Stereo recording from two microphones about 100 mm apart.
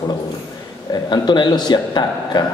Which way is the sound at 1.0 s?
50° left (ahead or behind).